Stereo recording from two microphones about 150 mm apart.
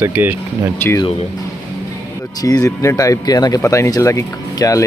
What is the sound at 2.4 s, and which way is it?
Speech, 25° left (ahead or behind).